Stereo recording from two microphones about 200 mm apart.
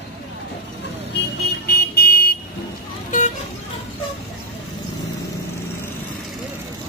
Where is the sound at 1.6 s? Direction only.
50° left (ahead or behind).